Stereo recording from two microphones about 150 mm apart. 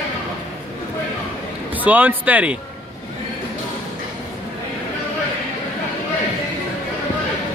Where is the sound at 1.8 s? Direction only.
10° right (ahead or behind).